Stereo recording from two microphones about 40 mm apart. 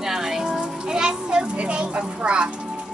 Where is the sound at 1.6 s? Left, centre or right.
Right.